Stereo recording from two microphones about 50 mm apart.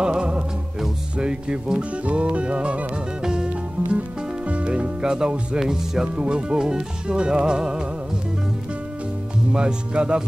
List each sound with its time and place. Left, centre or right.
0.0 s music: centre
1.1 s speech: centre
4.5 s music: right
5.6 s speech: centre
9.5 s speech: centre